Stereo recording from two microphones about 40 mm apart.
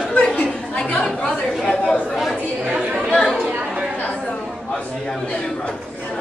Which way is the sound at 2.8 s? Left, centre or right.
Right.